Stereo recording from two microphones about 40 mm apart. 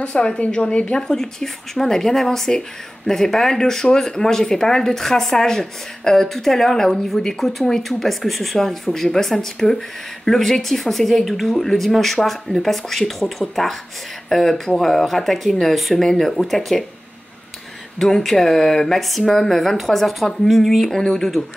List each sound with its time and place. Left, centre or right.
0.0 s speech: left
0.9 s speech: centre
16.0 s speech: centre
17.9 s speech: centre